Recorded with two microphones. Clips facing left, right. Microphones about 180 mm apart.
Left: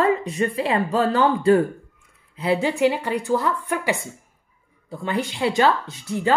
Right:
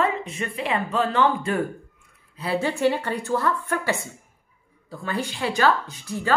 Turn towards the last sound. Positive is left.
turn(degrees=20)  # may be behind; listen again after turning